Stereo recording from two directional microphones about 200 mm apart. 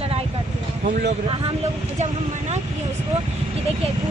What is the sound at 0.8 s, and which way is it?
Speech, 40° right (ahead or behind).